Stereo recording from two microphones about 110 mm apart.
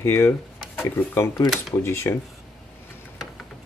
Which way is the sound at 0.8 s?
25° left (ahead or behind).